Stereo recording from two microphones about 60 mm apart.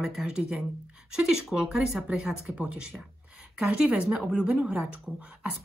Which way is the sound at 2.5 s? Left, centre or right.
Right.